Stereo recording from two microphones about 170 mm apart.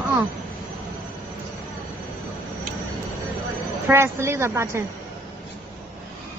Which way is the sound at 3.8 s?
15° right (ahead or behind).